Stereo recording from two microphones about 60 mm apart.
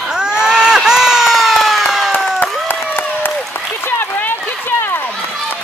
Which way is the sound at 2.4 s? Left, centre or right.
Left.